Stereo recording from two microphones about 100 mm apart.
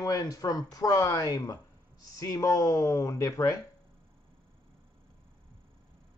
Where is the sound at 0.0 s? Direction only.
40° left (ahead or behind).